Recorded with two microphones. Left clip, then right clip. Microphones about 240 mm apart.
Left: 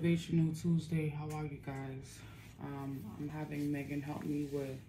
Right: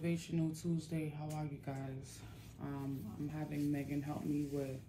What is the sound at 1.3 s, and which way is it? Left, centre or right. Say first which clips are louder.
Speech: left 2 dB; centre.